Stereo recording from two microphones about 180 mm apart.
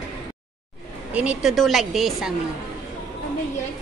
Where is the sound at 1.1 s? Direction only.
5° right (ahead or behind).